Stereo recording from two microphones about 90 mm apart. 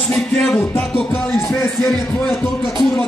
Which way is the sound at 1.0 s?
10° left (ahead or behind).